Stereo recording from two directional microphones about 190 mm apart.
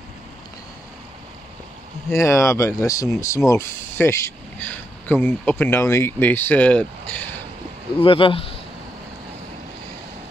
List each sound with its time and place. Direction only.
2.0 s speech: 15° left (ahead or behind)
8.0 s speech: 30° left (ahead or behind)